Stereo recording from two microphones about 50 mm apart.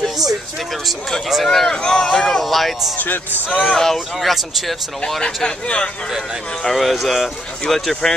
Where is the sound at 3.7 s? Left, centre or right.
Centre.